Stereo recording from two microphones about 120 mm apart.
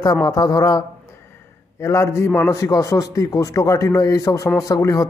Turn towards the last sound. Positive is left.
turn(degrees=30)  # may be behind; listen again after turning